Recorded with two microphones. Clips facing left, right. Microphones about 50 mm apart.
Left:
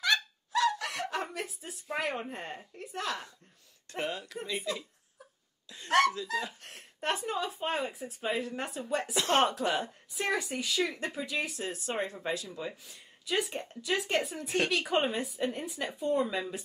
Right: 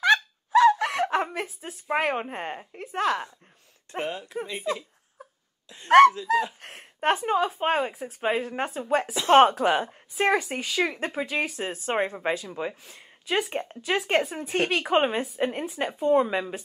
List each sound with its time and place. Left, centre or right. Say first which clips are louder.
0.0 s a sound: right 8 dB; right
3.9 s speech: right 5 dB; centre
5.9 s speech: right 11 dB; right